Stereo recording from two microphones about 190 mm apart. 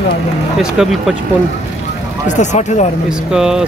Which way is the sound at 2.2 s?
40° left (ahead or behind).